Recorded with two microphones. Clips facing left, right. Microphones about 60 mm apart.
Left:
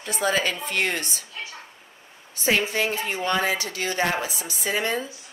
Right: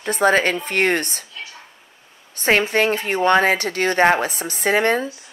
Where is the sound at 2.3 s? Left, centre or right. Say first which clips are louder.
Right 6 dB; right.